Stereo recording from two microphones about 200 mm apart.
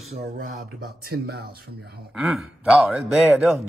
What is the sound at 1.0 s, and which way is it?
Speech, 50° right (ahead or behind).